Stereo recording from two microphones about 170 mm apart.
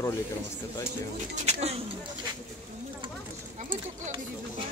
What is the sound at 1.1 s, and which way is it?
Speech, 40° right (ahead or behind).